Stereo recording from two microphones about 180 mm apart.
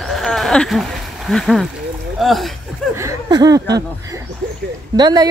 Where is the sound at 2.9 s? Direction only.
20° right (ahead or behind).